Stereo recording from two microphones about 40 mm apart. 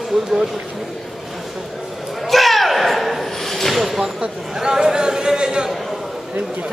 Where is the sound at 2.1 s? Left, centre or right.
Centre.